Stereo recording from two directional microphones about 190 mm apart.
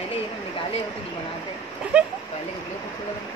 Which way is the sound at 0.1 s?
30° left (ahead or behind).